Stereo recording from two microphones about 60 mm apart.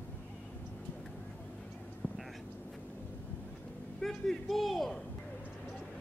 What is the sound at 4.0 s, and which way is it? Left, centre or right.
Speech, centre.